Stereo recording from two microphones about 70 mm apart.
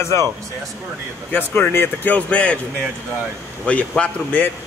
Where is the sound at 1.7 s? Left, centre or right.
Left.